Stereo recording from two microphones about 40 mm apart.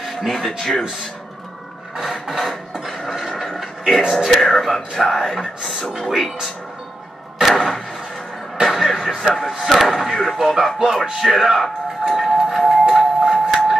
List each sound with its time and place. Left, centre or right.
0.0 s speech: centre
2.2 s television: centre
4.2 s speech: centre
7.4 s vehicle: centre
8.6 s a sound: centre
9.5 s speech: centre
12.1 s music: centre
12.9 s a sound: centre